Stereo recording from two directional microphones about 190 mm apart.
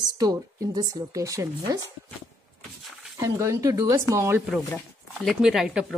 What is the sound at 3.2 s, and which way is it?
Speech, 15° right (ahead or behind).